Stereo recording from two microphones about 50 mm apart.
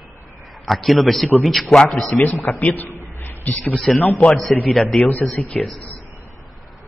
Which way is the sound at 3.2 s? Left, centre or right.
Left.